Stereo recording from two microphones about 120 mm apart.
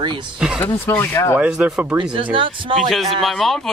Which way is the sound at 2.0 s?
45° right (ahead or behind).